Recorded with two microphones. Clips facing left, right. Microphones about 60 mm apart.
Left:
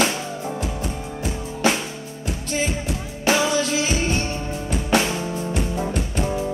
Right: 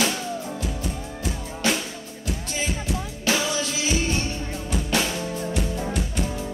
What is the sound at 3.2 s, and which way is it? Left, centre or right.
Music, left.